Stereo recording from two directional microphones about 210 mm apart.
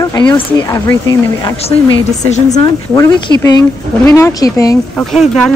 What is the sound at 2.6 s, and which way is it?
Speech, 15° left (ahead or behind).